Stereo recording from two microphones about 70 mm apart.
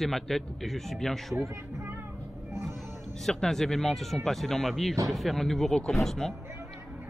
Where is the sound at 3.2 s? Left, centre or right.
Centre.